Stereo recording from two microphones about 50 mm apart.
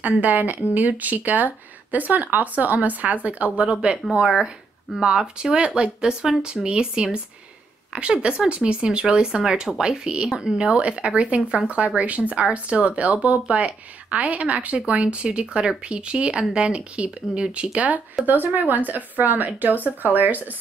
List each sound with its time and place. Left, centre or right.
0.0 s speech: right; by 17.6 s centre
17.7 s speech: right